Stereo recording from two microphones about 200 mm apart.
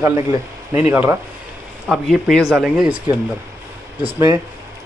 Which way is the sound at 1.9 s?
Centre (ahead or behind).